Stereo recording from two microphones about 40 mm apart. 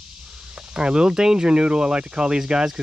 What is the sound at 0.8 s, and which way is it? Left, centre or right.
Speech, right.